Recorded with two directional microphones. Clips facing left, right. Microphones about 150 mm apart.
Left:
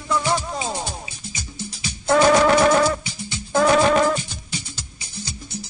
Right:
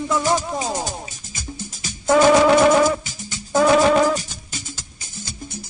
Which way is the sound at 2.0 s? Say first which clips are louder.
Right 2 dB; 5° right (ahead or behind).